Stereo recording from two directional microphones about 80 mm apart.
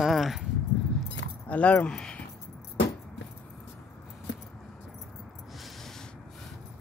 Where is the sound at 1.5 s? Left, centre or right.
Centre.